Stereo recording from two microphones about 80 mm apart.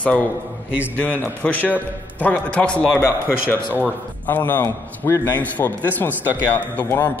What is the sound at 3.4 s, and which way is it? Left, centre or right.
A man's voice, left.